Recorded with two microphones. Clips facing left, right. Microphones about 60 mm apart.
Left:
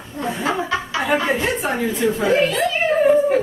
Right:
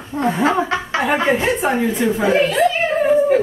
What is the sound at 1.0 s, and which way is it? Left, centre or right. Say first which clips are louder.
Speech: right 2 dB; right.